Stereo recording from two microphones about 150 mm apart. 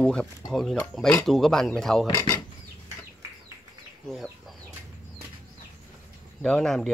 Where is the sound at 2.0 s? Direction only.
30° left (ahead or behind).